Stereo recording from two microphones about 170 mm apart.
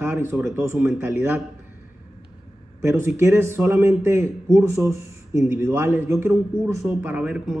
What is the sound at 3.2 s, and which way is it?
Speech, 15° right (ahead or behind).